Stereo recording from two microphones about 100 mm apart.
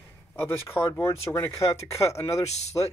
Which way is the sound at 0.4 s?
25° left (ahead or behind).